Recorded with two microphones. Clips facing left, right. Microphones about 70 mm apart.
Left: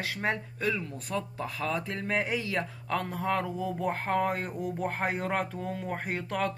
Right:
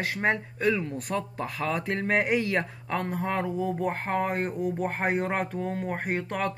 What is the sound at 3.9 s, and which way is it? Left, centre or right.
Speech, right.